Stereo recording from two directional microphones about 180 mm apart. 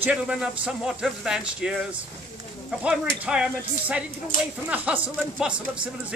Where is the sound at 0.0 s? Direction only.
5° right (ahead or behind).